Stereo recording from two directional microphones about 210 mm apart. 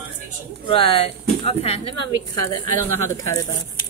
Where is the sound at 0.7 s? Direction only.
25° left (ahead or behind).